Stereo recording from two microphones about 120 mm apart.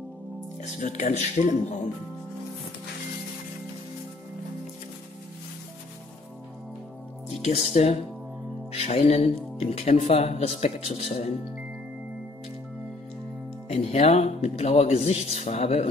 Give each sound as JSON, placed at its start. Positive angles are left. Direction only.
{"t": 0.6, "sound": "speech", "side_deg": 85}
{"t": 7.4, "sound": "speech", "side_deg": 70}
{"t": 13.7, "sound": "speech", "side_deg": 65}